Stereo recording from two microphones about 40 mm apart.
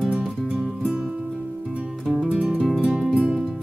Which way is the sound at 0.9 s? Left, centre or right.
Centre.